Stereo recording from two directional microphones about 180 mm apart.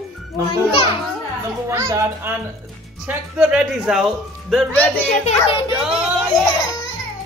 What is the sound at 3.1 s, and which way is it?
Speech, 5° right (ahead or behind).